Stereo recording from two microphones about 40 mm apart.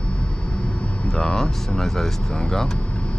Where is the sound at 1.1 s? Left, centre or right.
Centre.